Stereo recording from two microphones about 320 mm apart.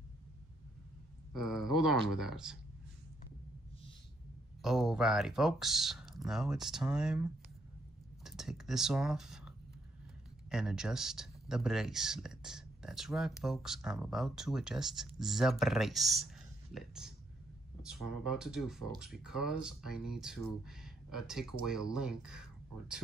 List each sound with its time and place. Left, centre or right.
1.3 s speech: centre
4.6 s speech: centre
10.5 s speech: centre